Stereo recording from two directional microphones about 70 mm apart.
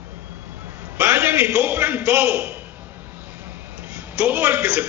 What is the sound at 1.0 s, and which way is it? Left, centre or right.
A man's voice, right.